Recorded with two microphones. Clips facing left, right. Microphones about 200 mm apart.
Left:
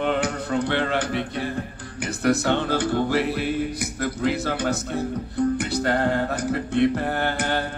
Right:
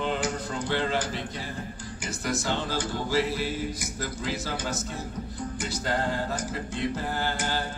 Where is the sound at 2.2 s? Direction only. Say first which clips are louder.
Left 9 dB; 60° left (ahead or behind).